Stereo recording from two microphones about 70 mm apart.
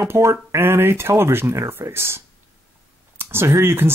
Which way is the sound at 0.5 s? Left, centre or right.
Right.